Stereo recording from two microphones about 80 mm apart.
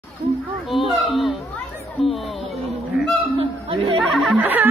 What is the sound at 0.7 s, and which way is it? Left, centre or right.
Speech, centre.